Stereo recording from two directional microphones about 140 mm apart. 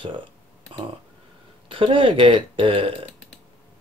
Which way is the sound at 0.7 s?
35° right (ahead or behind).